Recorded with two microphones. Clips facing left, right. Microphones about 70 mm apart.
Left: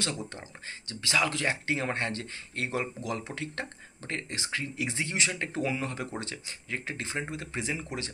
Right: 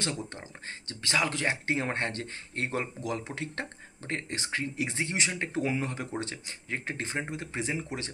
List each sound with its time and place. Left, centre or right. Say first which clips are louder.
0.0 s speech: even; right